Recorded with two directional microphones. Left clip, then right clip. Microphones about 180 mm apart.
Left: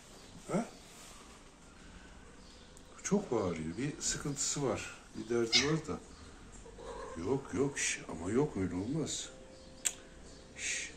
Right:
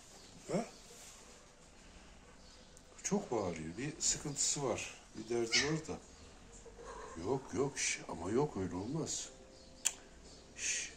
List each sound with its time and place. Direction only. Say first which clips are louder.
3.0 s speech: left 3 dB; 10° right (ahead or behind)
7.2 s speech: left 2 dB; 20° right (ahead or behind)
10.5 s a sound: left 1 dB; 20° right (ahead or behind)